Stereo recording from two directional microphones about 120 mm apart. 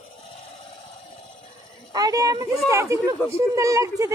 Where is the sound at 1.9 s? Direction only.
30° right (ahead or behind).